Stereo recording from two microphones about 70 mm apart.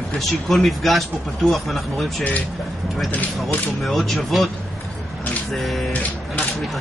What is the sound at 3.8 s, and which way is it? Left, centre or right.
Speech, centre.